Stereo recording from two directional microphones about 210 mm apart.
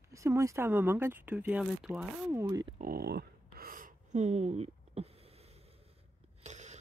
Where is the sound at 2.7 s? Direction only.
45° right (ahead or behind).